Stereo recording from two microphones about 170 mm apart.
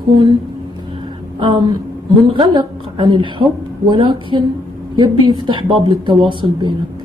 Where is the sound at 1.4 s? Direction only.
25° right (ahead or behind).